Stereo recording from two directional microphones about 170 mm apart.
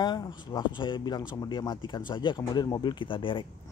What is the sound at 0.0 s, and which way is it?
Speech, 25° left (ahead or behind).